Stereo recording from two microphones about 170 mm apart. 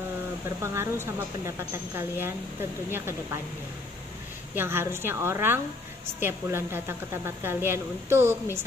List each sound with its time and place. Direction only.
0.6 s speech: 15° right (ahead or behind)
4.6 s speech: 15° right (ahead or behind)